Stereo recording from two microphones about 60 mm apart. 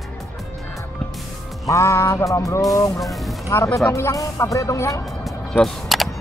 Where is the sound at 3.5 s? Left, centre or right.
Left.